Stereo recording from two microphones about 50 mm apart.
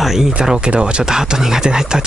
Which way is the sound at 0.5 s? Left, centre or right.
Centre.